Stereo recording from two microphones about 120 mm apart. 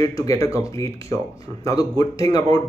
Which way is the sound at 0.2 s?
30° left (ahead or behind).